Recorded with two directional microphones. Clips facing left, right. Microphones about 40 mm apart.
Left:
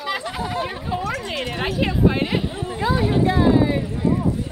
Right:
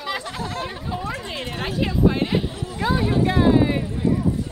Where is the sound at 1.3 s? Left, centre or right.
Centre.